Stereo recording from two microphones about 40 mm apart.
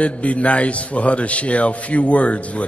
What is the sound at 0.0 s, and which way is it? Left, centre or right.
A man's voice, left.